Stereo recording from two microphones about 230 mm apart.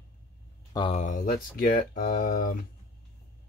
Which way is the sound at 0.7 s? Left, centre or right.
Left.